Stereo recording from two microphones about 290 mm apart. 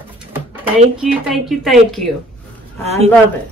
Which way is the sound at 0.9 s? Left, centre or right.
Centre.